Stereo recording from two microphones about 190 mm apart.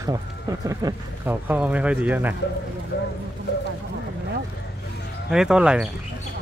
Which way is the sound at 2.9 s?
60° left (ahead or behind).